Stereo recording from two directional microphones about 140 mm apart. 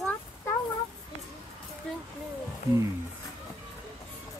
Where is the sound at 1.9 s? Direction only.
5° left (ahead or behind).